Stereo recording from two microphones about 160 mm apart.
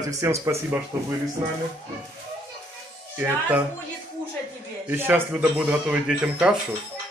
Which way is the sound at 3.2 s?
10° right (ahead or behind).